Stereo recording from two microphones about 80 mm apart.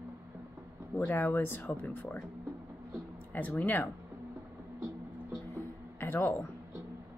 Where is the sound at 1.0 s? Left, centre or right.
Left.